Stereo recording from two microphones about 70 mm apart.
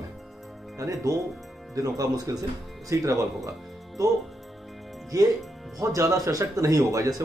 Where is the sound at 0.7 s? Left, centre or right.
Right.